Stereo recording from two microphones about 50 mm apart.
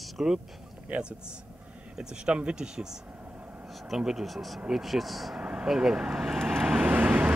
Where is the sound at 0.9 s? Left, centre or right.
Right.